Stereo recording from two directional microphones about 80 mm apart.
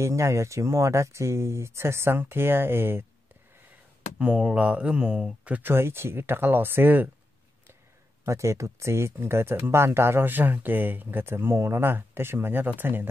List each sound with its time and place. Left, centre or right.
0.0 s speech: right
4.2 s speech: centre
5.7 s speech: right
8.3 s speech: right